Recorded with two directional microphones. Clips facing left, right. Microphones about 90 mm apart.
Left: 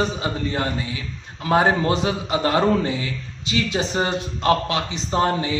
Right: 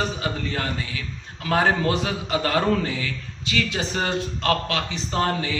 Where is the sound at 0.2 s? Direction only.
25° left (ahead or behind).